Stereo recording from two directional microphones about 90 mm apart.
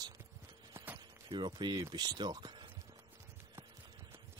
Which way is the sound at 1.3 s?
60° right (ahead or behind).